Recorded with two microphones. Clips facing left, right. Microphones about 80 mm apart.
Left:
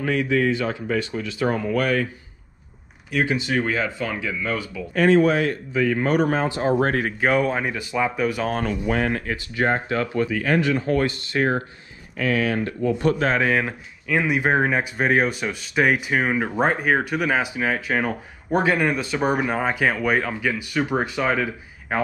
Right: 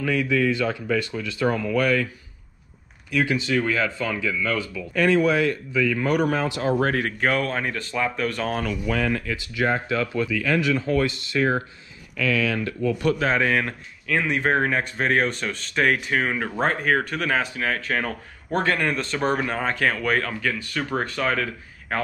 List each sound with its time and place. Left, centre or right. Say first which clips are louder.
0.0 s speech: left 1 dB; left
3.2 s speech: even; left
4.7 s speech: left 4 dB; left
6.8 s speech: left 1 dB; centre
8.6 s speech: left 2 dB; left
13.2 s speech: left 1 dB; centre